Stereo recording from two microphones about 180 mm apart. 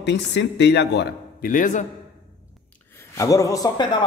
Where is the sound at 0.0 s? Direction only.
75° left (ahead or behind).